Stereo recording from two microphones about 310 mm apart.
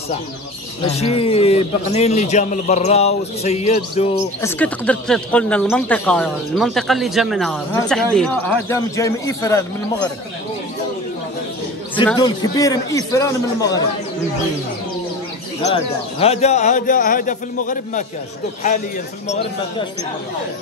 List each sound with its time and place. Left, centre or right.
0.8 s a man's voice: centre
4.5 s a man's voice: centre
11.9 s a man's voice: centre
15.6 s a man's voice: centre
19.2 s a man's voice: left